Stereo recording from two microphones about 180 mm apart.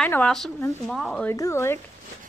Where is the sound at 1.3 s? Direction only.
15° left (ahead or behind).